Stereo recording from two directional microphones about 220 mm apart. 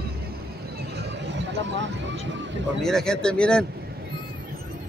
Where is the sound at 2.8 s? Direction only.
5° left (ahead or behind).